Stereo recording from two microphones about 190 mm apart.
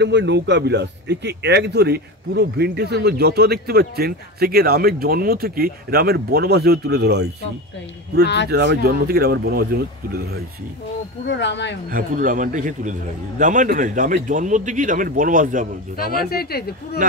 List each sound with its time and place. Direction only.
0.0 s a man's voice: 70° right (ahead or behind)
8.5 s a man's voice: 60° right (ahead or behind)
11.2 s speech: 65° left (ahead or behind)
11.9 s a man's voice: 45° right (ahead or behind)
16.0 s speech: 55° left (ahead or behind)